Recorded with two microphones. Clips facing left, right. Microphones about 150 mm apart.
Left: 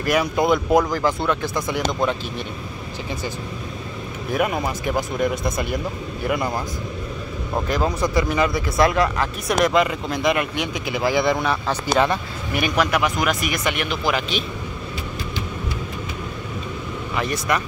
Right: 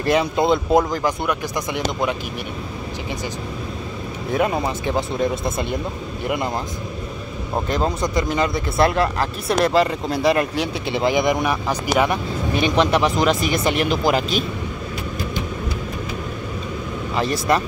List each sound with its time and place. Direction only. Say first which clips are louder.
0.0 s speech: right 1 dB; 25° right (ahead or behind)
4.3 s speech: right 2 dB; 25° right (ahead or behind)
7.7 s speech: left 1 dB; 25° right (ahead or behind); by 14.4 s 40° right (ahead or behind)
17.1 s speech: right 3 dB; 30° right (ahead or behind)